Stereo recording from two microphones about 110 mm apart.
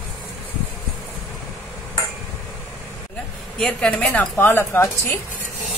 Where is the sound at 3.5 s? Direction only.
5° left (ahead or behind); by 4.8 s 20° left (ahead or behind).